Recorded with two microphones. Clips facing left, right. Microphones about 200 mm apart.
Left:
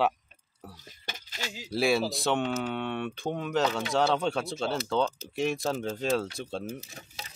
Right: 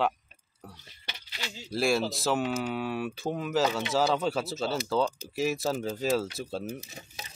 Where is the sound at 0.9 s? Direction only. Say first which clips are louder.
Left 3 dB; 45° left (ahead or behind).